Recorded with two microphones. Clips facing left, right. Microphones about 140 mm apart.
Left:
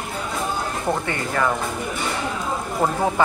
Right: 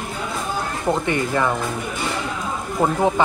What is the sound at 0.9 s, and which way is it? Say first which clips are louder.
Speech: right 6 dB; 20° right (ahead or behind).